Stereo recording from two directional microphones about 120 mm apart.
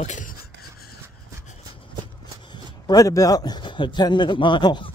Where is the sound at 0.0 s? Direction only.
85° left.